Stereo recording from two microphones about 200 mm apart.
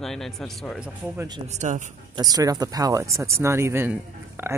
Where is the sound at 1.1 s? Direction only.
20° right (ahead or behind).